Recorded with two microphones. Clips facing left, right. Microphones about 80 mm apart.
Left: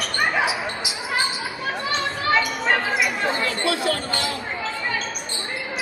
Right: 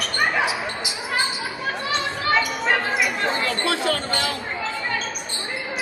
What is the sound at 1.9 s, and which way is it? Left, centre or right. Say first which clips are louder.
Children playing: left 1 dB; centre.